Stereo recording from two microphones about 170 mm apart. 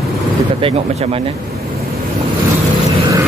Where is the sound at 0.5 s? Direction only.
35° right (ahead or behind).